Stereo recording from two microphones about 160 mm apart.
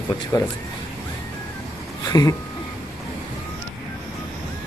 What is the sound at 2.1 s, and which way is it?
Speech, 20° left (ahead or behind).